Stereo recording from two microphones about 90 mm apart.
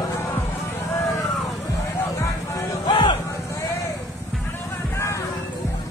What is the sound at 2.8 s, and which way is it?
Music, 65° left (ahead or behind).